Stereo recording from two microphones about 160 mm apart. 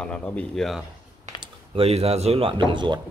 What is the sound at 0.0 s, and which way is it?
Speech, 5° left (ahead or behind).